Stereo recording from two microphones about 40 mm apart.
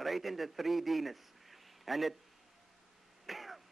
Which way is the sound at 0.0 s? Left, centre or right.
Centre.